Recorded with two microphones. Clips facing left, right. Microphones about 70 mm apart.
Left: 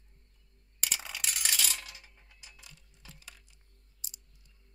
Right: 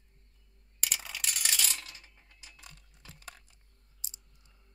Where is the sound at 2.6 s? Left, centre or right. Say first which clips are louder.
Right 2 dB; right.